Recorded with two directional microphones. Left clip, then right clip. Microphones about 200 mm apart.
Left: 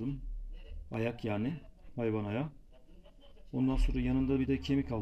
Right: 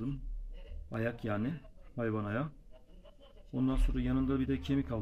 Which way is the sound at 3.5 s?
10° right (ahead or behind).